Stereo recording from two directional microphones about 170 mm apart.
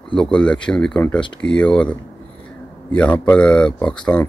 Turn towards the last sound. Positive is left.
turn(degrees=5)  # may be behind; listen again after turning